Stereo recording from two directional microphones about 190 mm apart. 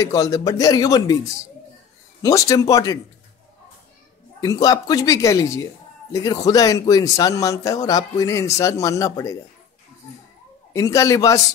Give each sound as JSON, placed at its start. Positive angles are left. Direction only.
{"t": 0.0, "sound": "speech", "side_deg": 20}
{"t": 2.2, "sound": "a man's voice", "side_deg": 15}
{"t": 4.4, "sound": "a man's voice", "side_deg": 20}
{"t": 10.7, "sound": "a man's voice", "side_deg": 15}